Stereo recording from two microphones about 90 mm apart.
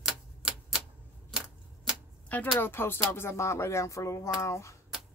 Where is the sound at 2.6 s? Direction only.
25° left (ahead or behind).